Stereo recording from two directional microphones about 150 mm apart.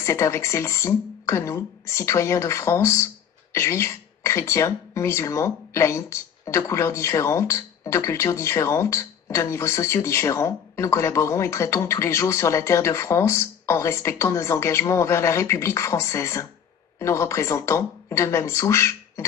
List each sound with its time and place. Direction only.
0.0 s speech: 20° left (ahead or behind)